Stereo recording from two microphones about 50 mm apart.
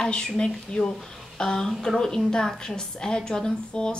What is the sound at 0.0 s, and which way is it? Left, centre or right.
A woman's voice, centre.